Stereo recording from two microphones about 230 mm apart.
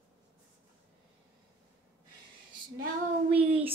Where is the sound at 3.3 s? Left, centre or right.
Centre.